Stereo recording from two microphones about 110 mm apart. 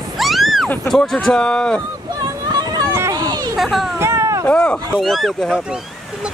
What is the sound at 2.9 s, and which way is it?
Run, 25° right (ahead or behind).